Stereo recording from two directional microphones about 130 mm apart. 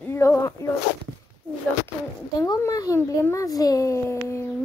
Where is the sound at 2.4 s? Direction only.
25° left (ahead or behind).